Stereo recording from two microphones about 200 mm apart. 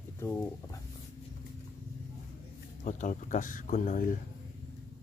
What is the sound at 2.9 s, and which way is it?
Speech, 40° left (ahead or behind).